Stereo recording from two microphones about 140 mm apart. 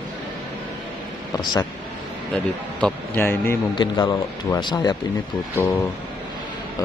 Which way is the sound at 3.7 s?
35° left (ahead or behind).